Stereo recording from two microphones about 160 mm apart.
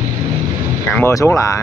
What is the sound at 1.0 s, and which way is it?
Speech, 15° left (ahead or behind).